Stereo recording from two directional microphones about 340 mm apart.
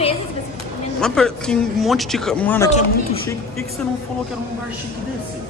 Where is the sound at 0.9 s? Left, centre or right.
Centre.